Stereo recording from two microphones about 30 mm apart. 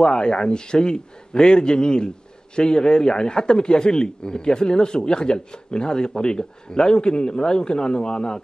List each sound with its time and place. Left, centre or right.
0.0 s a man's voice: left